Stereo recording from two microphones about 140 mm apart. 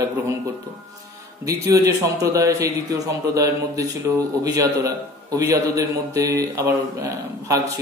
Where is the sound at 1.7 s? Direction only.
25° right (ahead or behind).